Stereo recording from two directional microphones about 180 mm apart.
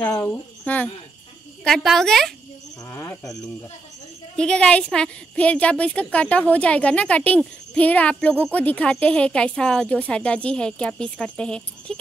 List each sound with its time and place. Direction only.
0.0 s a woman's voice: 10° left (ahead or behind)
2.9 s a woman's voice: 15° left (ahead or behind)
4.4 s a woman's voice: 5° left (ahead or behind)